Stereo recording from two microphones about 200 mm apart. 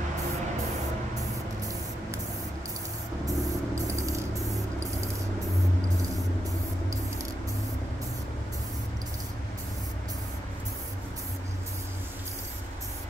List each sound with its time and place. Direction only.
3.3 s music: 15° right (ahead or behind)